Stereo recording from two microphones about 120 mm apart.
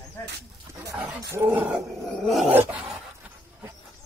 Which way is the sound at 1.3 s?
15° right (ahead or behind).